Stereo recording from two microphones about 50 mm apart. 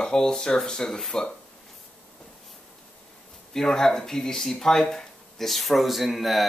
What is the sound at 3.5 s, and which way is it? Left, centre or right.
Speech, centre.